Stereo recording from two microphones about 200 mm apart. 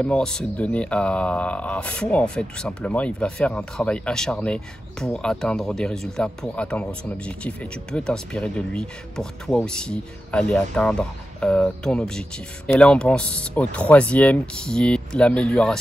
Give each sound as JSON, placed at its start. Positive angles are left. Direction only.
{"t": 0.0, "sound": "speech", "side_deg": 5}